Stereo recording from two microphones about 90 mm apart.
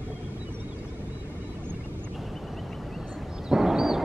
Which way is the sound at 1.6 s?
20° right (ahead or behind).